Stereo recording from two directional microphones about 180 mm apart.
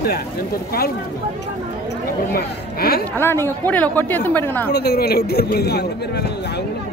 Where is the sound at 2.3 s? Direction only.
60° left (ahead or behind).